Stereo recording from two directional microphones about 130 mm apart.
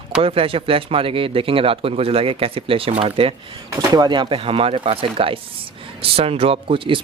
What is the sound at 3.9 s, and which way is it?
Speech, 35° right (ahead or behind).